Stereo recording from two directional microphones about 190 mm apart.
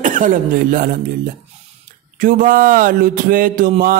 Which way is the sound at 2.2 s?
45° right (ahead or behind).